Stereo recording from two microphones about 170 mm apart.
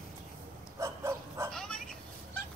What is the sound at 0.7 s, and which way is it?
Dog, 15° right (ahead or behind).